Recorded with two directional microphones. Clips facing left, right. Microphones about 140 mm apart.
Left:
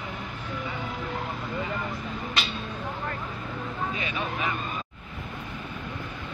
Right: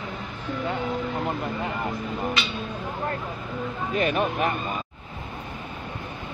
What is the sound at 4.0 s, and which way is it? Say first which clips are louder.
Speech: right 8 dB; 55° right (ahead or behind).